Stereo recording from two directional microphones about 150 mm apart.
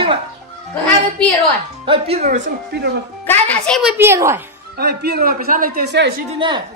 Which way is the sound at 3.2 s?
5° left (ahead or behind).